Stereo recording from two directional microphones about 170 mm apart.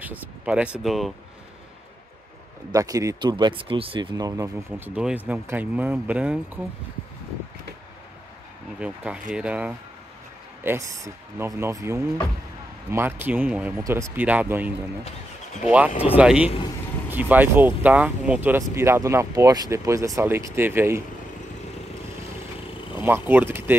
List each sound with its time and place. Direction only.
0.0 s speech: 10° right (ahead or behind)
2.7 s speech: 20° right (ahead or behind)
8.7 s speech: 5° right (ahead or behind)
15.9 s speech: 35° left (ahead or behind)
16.2 s speech: 5° right (ahead or behind)
23.0 s speech: 10° right (ahead or behind)